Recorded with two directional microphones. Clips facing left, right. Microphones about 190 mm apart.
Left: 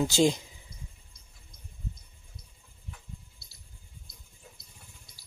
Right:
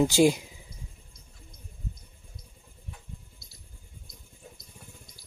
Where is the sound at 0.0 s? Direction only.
10° right (ahead or behind).